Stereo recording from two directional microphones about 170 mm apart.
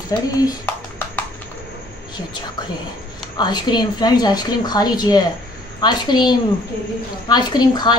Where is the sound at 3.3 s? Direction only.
25° left (ahead or behind).